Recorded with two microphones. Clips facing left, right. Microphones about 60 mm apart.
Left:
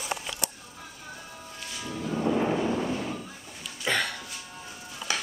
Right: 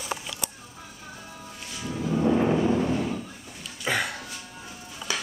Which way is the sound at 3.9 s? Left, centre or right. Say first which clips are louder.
Right 1 dB; centre.